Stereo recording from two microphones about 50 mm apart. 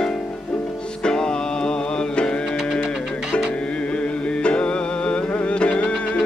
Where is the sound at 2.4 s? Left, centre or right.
Centre.